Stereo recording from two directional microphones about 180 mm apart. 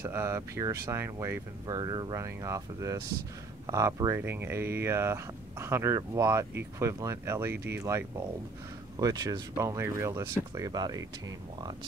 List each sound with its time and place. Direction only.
0.0 s speech: 15° right (ahead or behind)